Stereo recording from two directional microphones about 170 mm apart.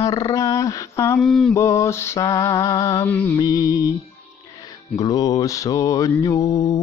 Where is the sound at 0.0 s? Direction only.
20° left (ahead or behind).